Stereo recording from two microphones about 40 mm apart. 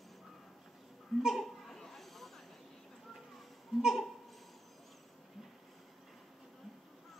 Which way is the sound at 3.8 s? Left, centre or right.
Centre.